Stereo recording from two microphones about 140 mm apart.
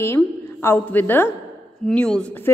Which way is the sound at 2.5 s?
20° left (ahead or behind).